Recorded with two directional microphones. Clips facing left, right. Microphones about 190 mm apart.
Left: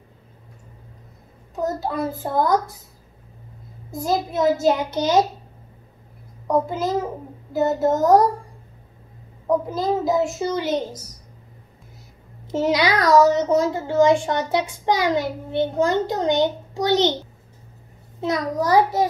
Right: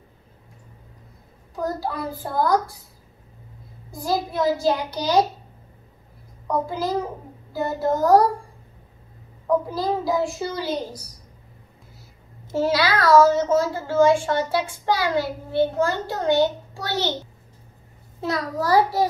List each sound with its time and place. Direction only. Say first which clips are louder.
1.5 s a child's voice: left 2 dB; 25° left (ahead or behind)
3.9 s a child's voice: left 2 dB; 20° left (ahead or behind)
6.4 s a child's voice: left 3 dB; 20° left (ahead or behind)
9.5 s a child's voice: left 1 dB; 20° left (ahead or behind)
12.5 s a child's voice: left 1 dB; 20° left (ahead or behind)
18.2 s a child's voice: left 3 dB; 20° left (ahead or behind)